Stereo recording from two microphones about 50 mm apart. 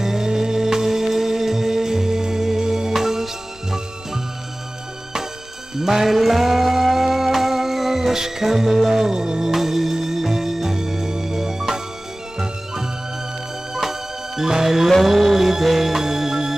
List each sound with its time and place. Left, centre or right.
0.0 s music: centre
5.8 s music: centre
13.7 s music: centre